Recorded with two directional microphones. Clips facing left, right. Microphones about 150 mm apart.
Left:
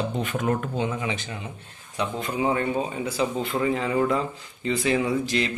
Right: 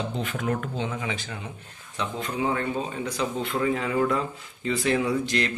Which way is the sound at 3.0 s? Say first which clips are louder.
Left 2 dB; centre (ahead or behind).